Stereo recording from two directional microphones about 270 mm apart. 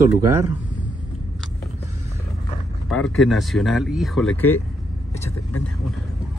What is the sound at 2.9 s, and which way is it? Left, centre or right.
Speech, centre.